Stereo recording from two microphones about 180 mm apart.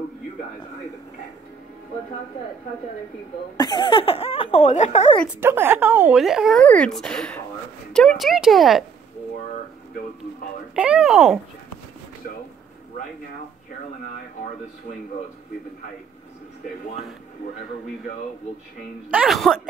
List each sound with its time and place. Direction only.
3.5 s speech: 25° left (ahead or behind)
5.4 s speech: 10° right (ahead or behind)
10.7 s speech: 5° right (ahead or behind)
19.0 s speech: 5° right (ahead or behind)